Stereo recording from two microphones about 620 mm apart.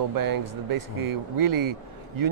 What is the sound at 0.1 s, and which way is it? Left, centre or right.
Speech, right.